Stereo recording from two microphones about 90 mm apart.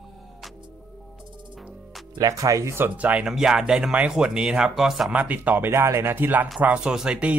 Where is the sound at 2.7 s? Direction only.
20° right (ahead or behind); by 5.1 s 5° right (ahead or behind).